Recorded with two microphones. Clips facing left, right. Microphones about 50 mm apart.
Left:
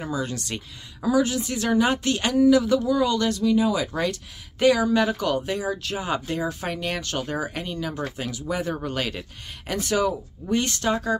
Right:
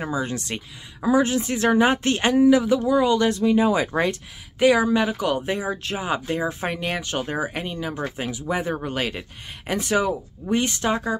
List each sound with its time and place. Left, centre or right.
0.0 s speech: right
4.6 s speech: centre
6.0 s speech: centre
6.4 s speech: right